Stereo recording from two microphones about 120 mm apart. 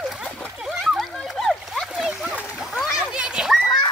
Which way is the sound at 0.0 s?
Centre (ahead or behind).